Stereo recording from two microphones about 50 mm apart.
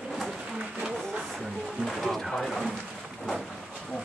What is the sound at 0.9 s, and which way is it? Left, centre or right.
Music, centre.